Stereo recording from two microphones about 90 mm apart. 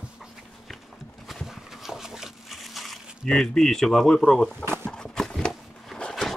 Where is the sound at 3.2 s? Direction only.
Centre (ahead or behind).